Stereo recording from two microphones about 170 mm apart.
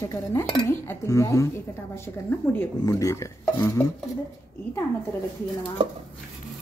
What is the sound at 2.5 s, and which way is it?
A woman's voice, 15° left (ahead or behind).